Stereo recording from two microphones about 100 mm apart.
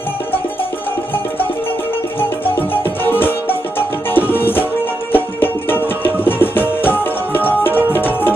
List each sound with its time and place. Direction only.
2.1 s music: 20° left (ahead or behind)